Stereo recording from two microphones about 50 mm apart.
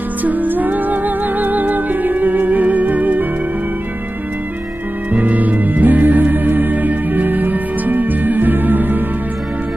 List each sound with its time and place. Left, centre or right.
0.2 s music: right
5.1 s music: right